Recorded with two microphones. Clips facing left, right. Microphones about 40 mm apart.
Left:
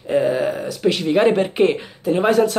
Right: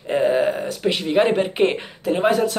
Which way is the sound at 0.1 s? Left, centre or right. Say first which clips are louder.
Even; right.